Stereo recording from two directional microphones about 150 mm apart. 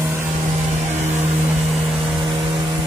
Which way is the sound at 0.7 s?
50° right (ahead or behind).